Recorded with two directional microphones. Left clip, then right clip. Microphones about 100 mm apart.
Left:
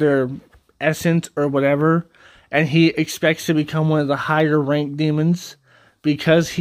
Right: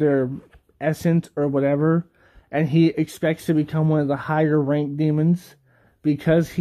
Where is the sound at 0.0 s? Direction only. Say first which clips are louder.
Left 3 dB; 15° left (ahead or behind).